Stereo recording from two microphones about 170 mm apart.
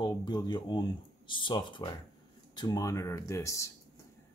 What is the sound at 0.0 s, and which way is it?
Speech, 25° left (ahead or behind).